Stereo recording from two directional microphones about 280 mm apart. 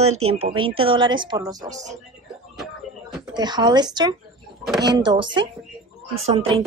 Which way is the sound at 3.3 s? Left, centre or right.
Centre.